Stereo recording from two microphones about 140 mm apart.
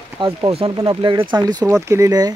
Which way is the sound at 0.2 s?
35° right (ahead or behind).